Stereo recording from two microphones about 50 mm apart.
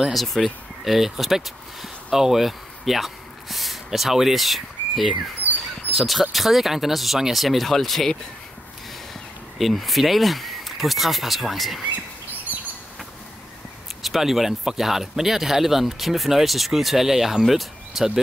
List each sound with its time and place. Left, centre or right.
0.1 s speech: centre
5.4 s dog: left
5.9 s speech: centre
9.6 s speech: centre
14.0 s speech: centre